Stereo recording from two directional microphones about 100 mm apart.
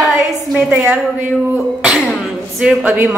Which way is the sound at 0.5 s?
10° right (ahead or behind).